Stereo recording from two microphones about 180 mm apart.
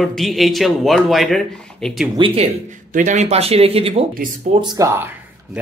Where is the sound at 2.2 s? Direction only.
40° right (ahead or behind).